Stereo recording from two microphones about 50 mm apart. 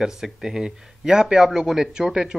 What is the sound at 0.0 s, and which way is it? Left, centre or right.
A man's voice, centre.